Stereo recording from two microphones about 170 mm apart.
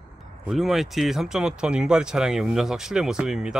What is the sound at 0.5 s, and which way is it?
Speech, centre (ahead or behind).